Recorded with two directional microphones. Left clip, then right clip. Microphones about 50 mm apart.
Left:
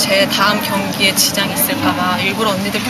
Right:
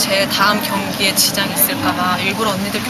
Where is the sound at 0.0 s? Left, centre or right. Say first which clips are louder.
Left 2 dB; centre.